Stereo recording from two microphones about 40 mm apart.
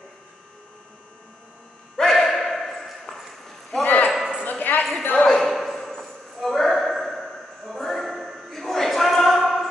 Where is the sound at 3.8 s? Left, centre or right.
Left.